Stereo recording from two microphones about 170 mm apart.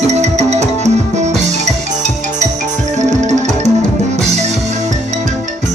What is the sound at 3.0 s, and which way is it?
Music, 45° right (ahead or behind).